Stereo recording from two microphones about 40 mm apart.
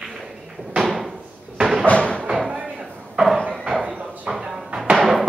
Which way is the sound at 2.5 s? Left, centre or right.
Right.